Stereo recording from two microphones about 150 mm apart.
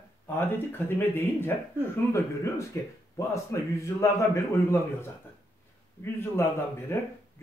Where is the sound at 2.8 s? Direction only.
20° left (ahead or behind).